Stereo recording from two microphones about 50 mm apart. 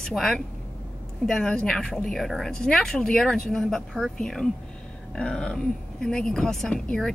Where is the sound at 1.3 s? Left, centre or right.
Centre.